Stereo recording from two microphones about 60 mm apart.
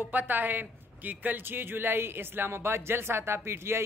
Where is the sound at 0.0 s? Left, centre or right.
Right.